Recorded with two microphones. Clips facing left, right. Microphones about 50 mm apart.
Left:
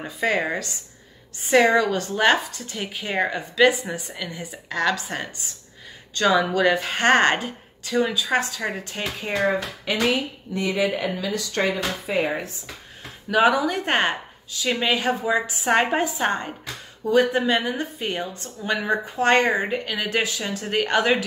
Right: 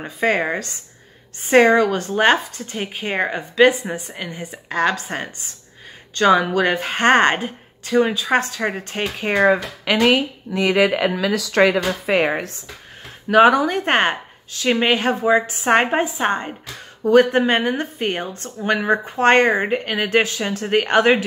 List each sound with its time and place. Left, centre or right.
0.0 s a woman's voice: right
9.9 s speech: right
10.5 s speech: right
10.9 s speech: right
12.3 s a woman's voice: right
15.9 s a woman's voice: right
17.0 s a woman's voice: right